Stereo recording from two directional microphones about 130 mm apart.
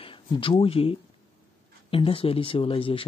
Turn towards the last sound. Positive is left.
turn(degrees=45)  # may be behind; listen again after turning